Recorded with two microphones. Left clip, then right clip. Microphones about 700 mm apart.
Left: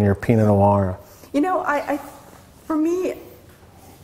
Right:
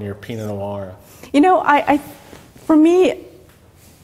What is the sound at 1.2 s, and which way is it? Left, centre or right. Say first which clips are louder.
Speech: right 7 dB; right.